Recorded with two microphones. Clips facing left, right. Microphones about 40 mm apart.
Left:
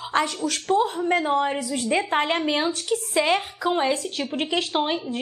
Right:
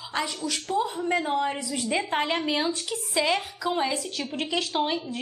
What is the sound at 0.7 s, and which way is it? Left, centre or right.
Speech, left.